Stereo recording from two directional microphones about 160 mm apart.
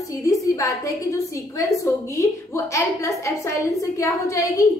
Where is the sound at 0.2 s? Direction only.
20° left (ahead or behind).